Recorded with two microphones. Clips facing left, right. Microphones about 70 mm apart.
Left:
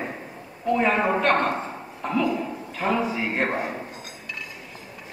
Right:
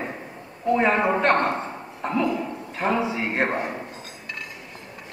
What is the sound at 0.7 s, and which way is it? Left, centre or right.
Speech, centre.